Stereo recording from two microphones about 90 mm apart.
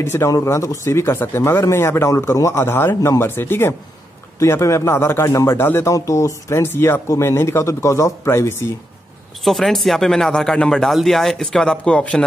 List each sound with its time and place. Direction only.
0.0 s speech: 30° left (ahead or behind)
5.9 s speech: 35° left (ahead or behind)
9.4 s speech: centre (ahead or behind)